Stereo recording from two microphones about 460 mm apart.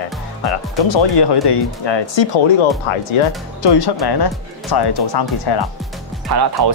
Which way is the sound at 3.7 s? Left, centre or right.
Left.